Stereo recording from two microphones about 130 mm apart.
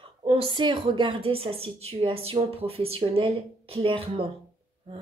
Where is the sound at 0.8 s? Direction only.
40° right (ahead or behind).